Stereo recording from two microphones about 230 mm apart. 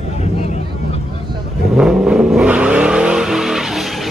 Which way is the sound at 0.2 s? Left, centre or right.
Left.